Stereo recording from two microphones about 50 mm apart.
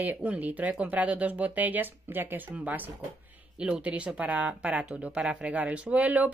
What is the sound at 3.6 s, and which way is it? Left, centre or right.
Speech, right.